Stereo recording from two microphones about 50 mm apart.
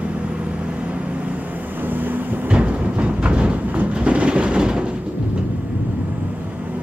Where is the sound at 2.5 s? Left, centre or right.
Right.